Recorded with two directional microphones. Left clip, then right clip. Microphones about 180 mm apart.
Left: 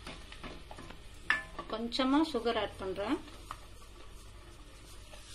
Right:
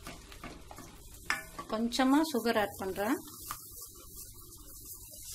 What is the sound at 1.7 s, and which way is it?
Speech, 80° right.